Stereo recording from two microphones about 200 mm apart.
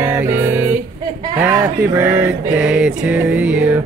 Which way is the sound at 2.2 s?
5° right (ahead or behind).